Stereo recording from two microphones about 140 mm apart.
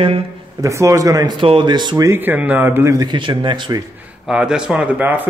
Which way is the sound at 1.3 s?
35° right (ahead or behind).